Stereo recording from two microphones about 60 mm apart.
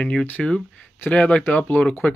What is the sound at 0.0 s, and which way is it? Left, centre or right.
Speech, centre.